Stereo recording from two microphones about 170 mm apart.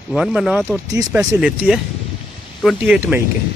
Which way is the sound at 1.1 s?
20° right (ahead or behind).